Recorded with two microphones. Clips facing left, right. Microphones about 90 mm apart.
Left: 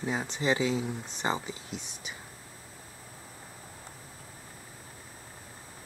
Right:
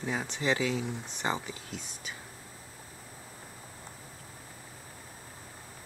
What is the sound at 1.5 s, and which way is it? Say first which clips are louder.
Speech: left 2 dB; 20° left (ahead or behind).